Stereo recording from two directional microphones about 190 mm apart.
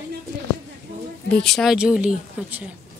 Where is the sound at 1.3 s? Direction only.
5° left (ahead or behind).